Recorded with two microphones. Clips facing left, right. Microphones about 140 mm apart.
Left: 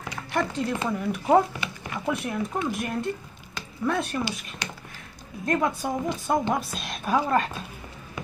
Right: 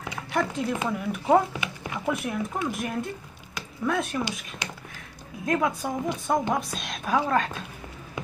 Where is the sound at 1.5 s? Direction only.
15° right (ahead or behind).